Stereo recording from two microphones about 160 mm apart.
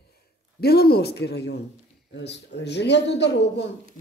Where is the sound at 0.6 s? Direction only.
80° left.